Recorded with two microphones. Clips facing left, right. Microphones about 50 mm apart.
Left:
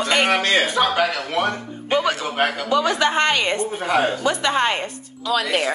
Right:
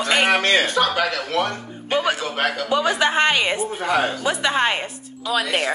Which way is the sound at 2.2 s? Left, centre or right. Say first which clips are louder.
Left 1 dB; centre.